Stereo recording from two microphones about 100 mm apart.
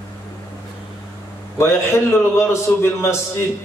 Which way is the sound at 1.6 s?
25° left (ahead or behind).